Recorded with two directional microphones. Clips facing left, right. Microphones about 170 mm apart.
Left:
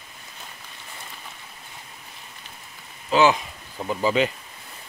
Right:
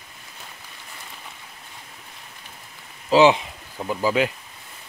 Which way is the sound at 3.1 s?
30° right (ahead or behind).